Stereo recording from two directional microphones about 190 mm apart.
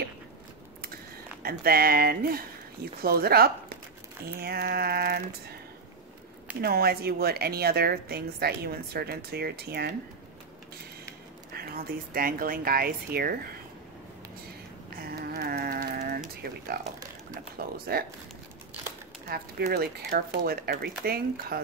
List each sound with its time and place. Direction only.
1.4 s a woman's voice: 55° right (ahead or behind)
6.6 s a woman's voice: 55° right (ahead or behind)
11.5 s speech: 50° right (ahead or behind)
15.0 s a sound: 55° right (ahead or behind)
17.3 s speech: 50° right (ahead or behind)
19.2 s speech: 55° right (ahead or behind)